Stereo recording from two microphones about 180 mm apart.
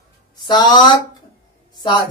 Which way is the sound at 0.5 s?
25° left (ahead or behind).